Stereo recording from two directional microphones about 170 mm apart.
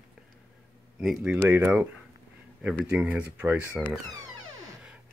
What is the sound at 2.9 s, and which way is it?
Speech, 10° right (ahead or behind).